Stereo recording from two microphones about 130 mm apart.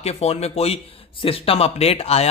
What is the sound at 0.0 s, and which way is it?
A man's voice, 55° left (ahead or behind).